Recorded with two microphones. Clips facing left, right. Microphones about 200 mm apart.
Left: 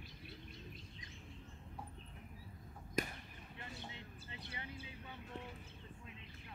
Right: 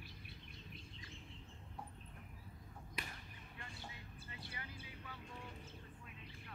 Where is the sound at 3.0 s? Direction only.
45° left (ahead or behind).